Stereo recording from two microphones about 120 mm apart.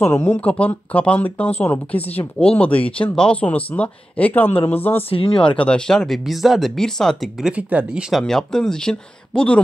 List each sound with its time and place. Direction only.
0.1 s speech: 15° left (ahead or behind)
5.1 s speech: 50° left (ahead or behind)
5.6 s speech: 5° left (ahead or behind)
7.4 s speech: 10° right (ahead or behind)
8.1 s speech: 5° left (ahead or behind)